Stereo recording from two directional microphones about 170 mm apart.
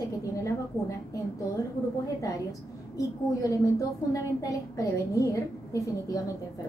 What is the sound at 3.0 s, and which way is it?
A woman's voice, 20° left (ahead or behind).